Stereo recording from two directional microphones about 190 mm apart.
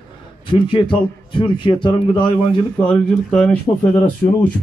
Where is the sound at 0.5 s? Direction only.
25° left (ahead or behind).